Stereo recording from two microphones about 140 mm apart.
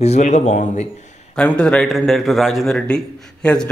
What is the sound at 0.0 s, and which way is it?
Speech, 55° left (ahead or behind).